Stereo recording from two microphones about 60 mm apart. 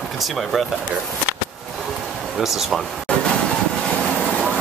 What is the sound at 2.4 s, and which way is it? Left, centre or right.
Speech, centre.